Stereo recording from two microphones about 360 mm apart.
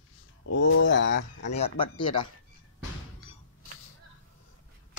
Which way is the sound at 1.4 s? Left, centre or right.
Centre.